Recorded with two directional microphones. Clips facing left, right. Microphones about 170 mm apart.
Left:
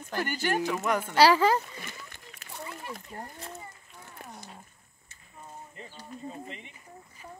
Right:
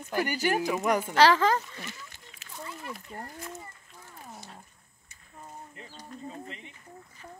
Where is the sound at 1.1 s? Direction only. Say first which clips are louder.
Left 2 dB; 10° left (ahead or behind).